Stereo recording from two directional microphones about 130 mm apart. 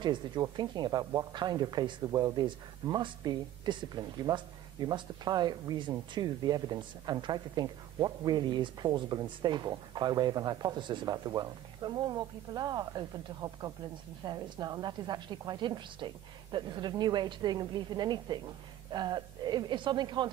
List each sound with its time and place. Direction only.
0.0 s speech: 35° right (ahead or behind)